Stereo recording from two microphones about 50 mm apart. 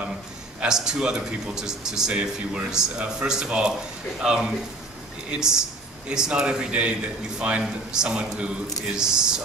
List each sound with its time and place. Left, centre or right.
0.7 s speech: centre